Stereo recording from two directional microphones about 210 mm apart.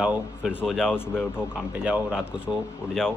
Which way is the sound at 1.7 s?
5° right (ahead or behind).